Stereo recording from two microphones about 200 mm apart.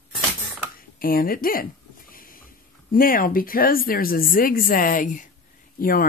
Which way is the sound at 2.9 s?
45° left (ahead or behind).